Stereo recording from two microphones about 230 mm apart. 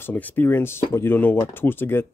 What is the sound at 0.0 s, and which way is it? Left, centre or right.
Speech, centre.